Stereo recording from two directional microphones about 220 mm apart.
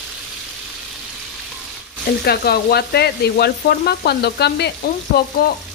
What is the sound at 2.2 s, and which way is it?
Frying, 45° left (ahead or behind).